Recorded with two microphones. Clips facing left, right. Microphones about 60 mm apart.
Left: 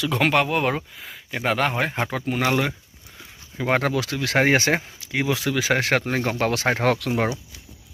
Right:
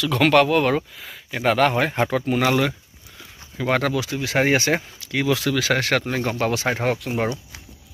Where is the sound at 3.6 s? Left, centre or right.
Left.